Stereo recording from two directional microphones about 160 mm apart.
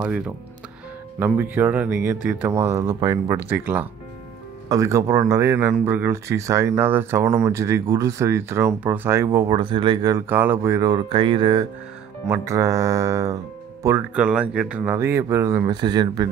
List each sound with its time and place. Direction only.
1.2 s speech: 15° right (ahead or behind)
10.3 s speech: 15° right (ahead or behind)
11.1 s speech: 35° right (ahead or behind)
12.3 s speech: 20° right (ahead or behind)